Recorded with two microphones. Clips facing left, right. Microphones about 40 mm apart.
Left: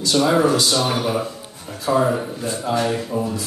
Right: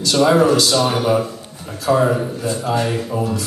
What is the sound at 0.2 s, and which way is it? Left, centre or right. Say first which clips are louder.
Speech: right 4 dB; centre.